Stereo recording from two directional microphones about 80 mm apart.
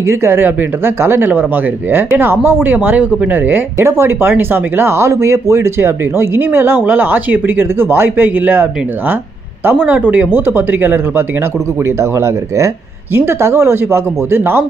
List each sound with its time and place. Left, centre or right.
0.0 s speech: right
3.7 s speech: right
10.1 s speech: right
12.0 s speech: right